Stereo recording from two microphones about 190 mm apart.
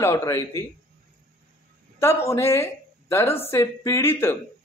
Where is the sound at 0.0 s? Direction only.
15° left (ahead or behind).